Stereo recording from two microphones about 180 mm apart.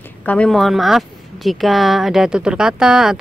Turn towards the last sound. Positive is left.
turn(degrees=-5)  # may be behind; listen again after turning